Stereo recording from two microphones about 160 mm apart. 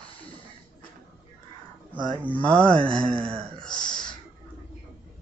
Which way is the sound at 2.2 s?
10° left (ahead or behind).